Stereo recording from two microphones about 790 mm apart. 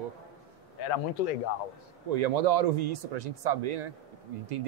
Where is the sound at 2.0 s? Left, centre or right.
Right.